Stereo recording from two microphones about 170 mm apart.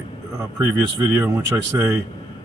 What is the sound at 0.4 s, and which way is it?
Speech, 15° right (ahead or behind).